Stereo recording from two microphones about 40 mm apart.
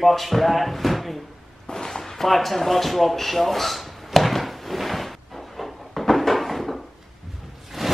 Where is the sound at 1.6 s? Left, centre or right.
Centre.